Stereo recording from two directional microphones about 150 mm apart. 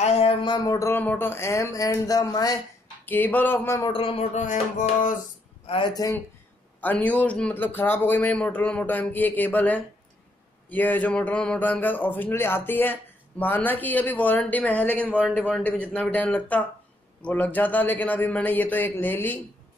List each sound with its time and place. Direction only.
0.0 s speech: 40° left (ahead or behind); by 2.6 s 25° left (ahead or behind)
3.1 s a man's voice: 10° left (ahead or behind)
3.9 s a sound: 40° left (ahead or behind); by 5.1 s 55° left (ahead or behind)
5.7 s speech: 30° left (ahead or behind)
6.8 s a man's voice: 10° left (ahead or behind)